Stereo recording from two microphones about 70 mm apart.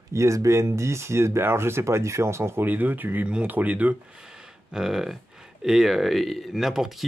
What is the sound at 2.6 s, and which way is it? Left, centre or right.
Speech, right.